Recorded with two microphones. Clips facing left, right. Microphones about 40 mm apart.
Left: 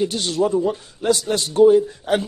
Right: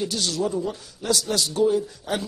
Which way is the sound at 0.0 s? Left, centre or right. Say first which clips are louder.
Left 5 dB; left.